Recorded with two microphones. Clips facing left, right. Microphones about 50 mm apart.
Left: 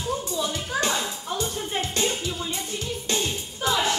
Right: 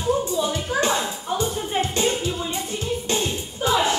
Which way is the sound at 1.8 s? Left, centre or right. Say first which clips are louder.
Right 4 dB; right.